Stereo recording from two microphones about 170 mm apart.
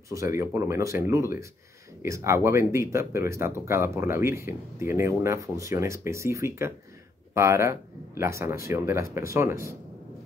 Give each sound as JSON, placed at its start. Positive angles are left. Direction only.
{"t": 0.1, "sound": "speech", "side_deg": -15}